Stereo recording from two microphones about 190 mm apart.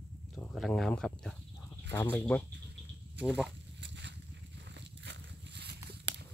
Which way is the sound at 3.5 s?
65° right (ahead or behind).